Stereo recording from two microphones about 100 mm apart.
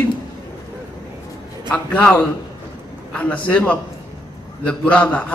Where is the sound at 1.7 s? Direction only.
15° left (ahead or behind).